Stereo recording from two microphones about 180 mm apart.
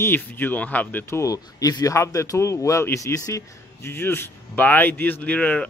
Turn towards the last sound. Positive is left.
turn(degrees=10)  # may be behind; listen again after turning